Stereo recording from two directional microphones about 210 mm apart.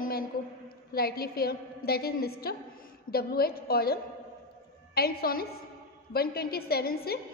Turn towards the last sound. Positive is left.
turn(degrees=45)  # may be behind; listen again after turning